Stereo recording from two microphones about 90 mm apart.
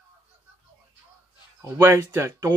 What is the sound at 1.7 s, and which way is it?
Speech, 30° right (ahead or behind).